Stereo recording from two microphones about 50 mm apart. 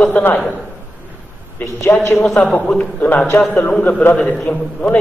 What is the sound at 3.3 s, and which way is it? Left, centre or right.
A man's voice, left.